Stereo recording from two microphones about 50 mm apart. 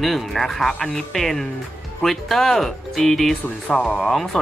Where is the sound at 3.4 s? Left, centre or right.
Left.